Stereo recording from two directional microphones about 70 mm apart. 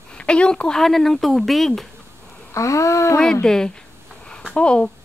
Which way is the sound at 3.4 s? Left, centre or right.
Centre.